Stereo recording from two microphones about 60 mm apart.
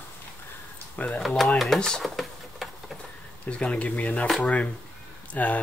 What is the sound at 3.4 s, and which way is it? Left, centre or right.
Speech, centre.